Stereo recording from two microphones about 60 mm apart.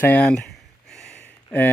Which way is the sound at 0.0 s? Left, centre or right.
Left.